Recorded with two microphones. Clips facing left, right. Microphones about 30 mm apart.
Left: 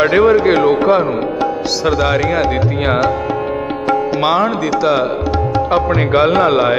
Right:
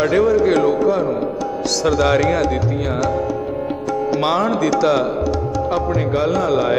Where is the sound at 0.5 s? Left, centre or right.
Left.